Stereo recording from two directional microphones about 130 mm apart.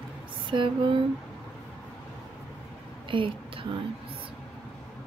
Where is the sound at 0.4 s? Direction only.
40° right (ahead or behind).